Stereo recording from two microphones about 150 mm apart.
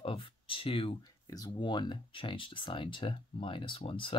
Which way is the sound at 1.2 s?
25° left (ahead or behind).